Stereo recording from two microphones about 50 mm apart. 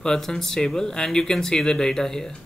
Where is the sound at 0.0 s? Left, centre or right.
Centre.